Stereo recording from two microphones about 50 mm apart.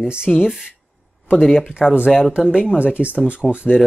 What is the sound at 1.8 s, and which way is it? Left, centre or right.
Speech, centre.